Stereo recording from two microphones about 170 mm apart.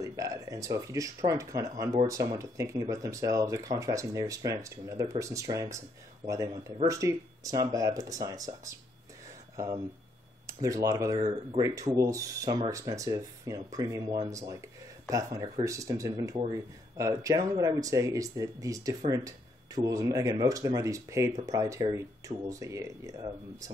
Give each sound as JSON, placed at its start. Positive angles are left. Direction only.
{"t": 0.0, "sound": "speech", "side_deg": -20}